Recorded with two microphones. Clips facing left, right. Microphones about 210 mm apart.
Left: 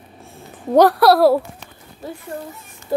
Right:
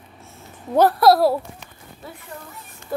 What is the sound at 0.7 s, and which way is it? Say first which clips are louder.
Speech: left 3 dB; 75° left (ahead or behind).